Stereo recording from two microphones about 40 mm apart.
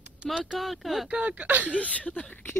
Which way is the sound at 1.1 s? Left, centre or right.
Right.